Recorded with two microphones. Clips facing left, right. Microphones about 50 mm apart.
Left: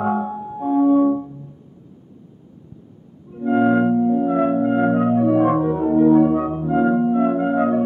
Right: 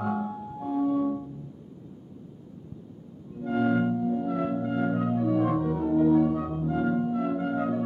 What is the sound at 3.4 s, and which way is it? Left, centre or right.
Music, left.